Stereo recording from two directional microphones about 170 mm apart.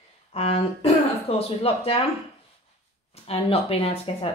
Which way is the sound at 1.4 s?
35° left (ahead or behind).